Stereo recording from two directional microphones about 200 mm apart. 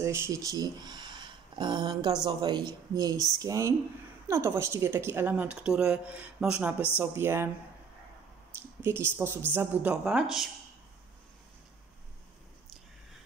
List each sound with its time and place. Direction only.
0.0 s a woman's voice: 15° right (ahead or behind)
8.8 s a woman's voice: 10° right (ahead or behind)